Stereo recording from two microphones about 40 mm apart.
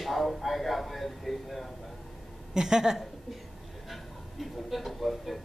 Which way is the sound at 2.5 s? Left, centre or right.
Centre.